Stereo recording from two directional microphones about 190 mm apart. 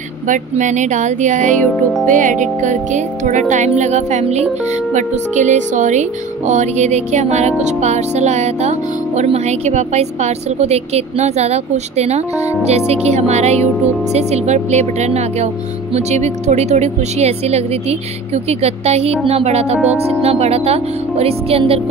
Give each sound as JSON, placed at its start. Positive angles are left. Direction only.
{"t": 0.3, "sound": "speech", "side_deg": -40}
{"t": 19.8, "sound": "speech", "side_deg": -5}
{"t": 20.2, "sound": "speech", "side_deg": -35}